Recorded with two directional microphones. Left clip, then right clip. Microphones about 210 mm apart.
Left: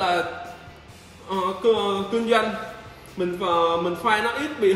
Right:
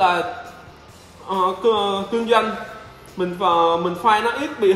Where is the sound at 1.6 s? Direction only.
20° right (ahead or behind).